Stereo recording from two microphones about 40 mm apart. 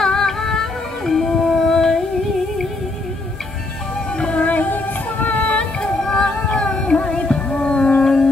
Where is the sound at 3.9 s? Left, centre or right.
Left.